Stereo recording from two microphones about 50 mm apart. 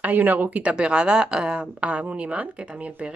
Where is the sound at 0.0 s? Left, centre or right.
Right.